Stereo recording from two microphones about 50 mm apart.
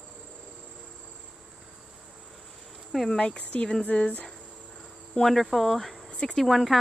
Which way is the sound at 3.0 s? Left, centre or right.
Centre.